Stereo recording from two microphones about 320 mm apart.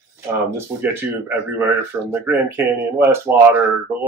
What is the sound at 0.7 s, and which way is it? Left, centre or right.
Speech, centre.